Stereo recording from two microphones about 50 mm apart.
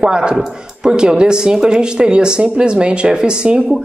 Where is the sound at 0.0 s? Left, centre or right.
Centre.